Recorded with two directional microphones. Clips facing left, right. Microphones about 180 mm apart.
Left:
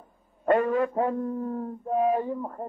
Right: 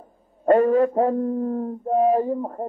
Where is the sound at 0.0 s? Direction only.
35° right (ahead or behind).